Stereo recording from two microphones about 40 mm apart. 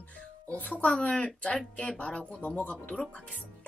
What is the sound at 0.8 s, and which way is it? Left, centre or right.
Speech, left.